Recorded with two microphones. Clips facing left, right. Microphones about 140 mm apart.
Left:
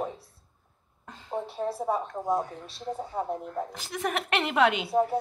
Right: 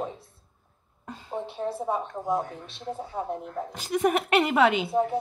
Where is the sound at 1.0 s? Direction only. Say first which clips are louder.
Even; 10° right (ahead or behind).